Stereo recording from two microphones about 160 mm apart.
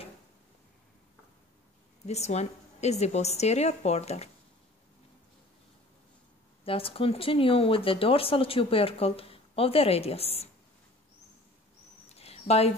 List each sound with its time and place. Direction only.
2.0 s a woman's voice: 45° left (ahead or behind)
6.6 s speech: 35° left (ahead or behind)
12.2 s a sound: 40° left (ahead or behind)